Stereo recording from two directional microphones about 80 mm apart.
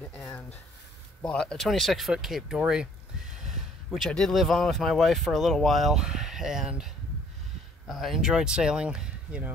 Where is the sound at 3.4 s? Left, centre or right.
Centre.